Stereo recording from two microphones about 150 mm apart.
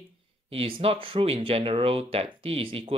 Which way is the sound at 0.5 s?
40° right (ahead or behind).